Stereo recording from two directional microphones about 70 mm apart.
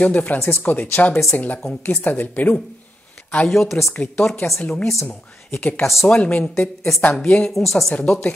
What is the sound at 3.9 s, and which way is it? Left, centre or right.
Speech, left.